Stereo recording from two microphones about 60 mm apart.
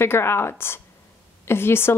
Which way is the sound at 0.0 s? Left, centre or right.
Left.